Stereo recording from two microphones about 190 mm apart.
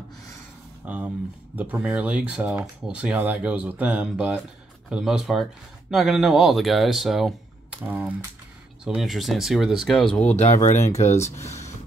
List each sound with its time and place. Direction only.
0.8 s speech: 10° right (ahead or behind)
10.6 s speech: 35° left (ahead or behind)
11.1 s speech: 15° left (ahead or behind)